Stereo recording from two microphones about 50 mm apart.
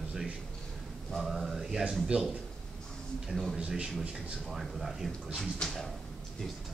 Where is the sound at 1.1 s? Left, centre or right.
Centre.